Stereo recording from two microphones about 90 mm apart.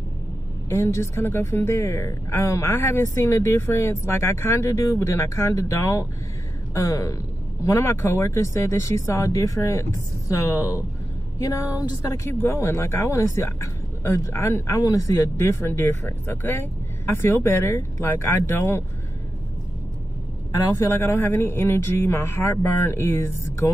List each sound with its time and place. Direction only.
0.7 s speech: 30° left (ahead or behind)
11.4 s speech: 40° left (ahead or behind)
20.8 s speech: 30° left (ahead or behind)